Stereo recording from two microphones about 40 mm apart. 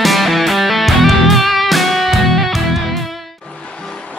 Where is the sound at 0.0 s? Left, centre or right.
Centre.